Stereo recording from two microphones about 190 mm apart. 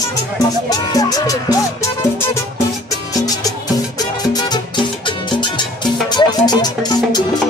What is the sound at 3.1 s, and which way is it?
Music, 20° left (ahead or behind).